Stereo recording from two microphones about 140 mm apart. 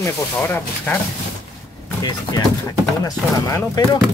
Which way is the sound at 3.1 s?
25° left (ahead or behind).